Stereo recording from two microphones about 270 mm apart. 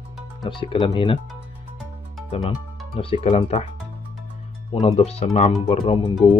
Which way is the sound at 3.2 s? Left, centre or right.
Left.